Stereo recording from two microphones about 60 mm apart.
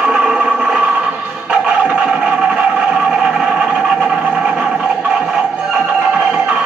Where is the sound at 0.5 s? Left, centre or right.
Centre.